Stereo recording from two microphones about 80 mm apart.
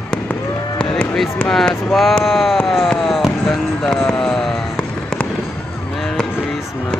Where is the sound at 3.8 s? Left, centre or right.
Centre.